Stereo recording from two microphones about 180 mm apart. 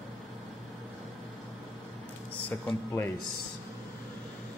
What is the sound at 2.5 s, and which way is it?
Speech, 10° left (ahead or behind).